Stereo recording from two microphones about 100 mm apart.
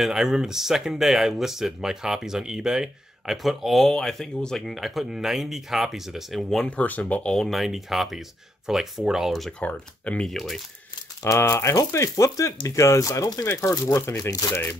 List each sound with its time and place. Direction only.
0.0 s speech: 5° right (ahead or behind)
6.8 s speech: 15° left (ahead or behind); by 9.5 s centre (ahead or behind)
9.6 s speech: 10° left (ahead or behind)
10.3 s speech: centre (ahead or behind)
11.2 s speech: 30° left (ahead or behind)
14.5 s speech: 20° left (ahead or behind)